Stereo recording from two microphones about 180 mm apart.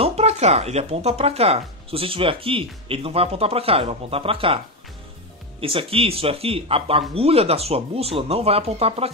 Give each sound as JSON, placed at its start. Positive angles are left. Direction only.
{"t": 0.0, "sound": "speech", "side_deg": -35}
{"t": 5.6, "sound": "speech", "side_deg": -30}